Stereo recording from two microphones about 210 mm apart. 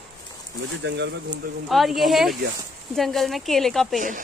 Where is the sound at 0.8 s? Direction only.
55° right (ahead or behind).